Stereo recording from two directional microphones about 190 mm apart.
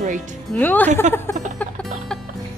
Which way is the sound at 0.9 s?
40° right (ahead or behind).